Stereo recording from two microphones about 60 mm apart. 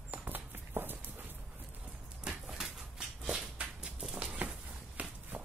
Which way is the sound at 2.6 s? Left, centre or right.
Centre.